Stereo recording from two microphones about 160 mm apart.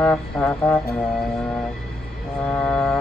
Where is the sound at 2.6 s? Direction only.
5° left (ahead or behind).